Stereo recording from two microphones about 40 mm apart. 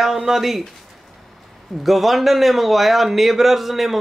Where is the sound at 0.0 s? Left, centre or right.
Centre.